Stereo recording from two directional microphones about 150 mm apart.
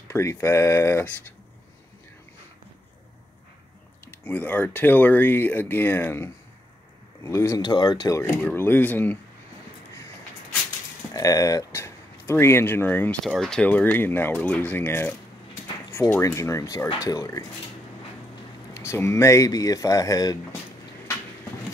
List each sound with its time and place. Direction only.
0.1 s speech: 20° left (ahead or behind)
4.1 s speech: 15° left (ahead or behind)
8.4 s speech: 10° left (ahead or behind)
11.1 s speech: 25° left (ahead or behind)
13.2 s speech: centre (ahead or behind); by 17.5 s 20° left (ahead or behind)
18.7 s speech: 15° left (ahead or behind)